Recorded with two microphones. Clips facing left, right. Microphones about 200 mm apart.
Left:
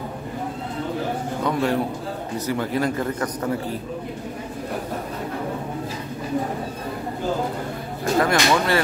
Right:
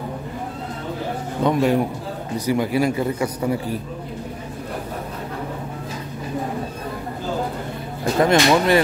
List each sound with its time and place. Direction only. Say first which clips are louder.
1.4 s a man's voice: right 5 dB; 15° right (ahead or behind)
8.2 s speech: right 4 dB; 20° right (ahead or behind)